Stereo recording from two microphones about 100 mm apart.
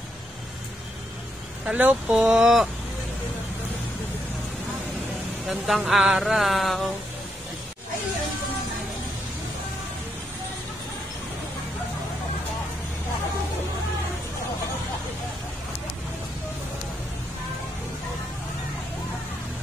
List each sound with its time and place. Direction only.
1.7 s speech: 10° right (ahead or behind)
5.5 s speech: 5° right (ahead or behind)